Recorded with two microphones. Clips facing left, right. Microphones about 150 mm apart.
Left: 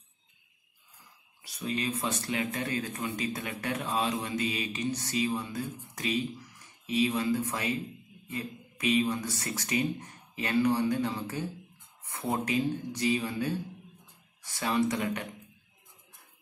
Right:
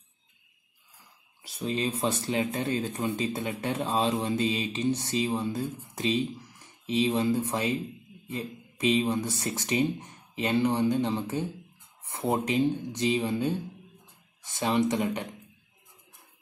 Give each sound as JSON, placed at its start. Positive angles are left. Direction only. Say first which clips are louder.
{"t": 1.4, "sound": "speech", "louder": "right 3 dB", "side_deg": -25}